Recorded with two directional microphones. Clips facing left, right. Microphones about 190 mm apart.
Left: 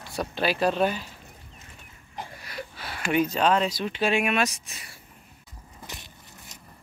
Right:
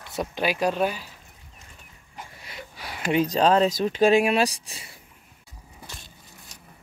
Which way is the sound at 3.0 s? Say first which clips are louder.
Right 2 dB; 30° right (ahead or behind).